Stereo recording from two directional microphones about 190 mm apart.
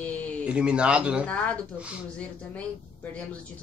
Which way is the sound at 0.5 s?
5° right (ahead or behind).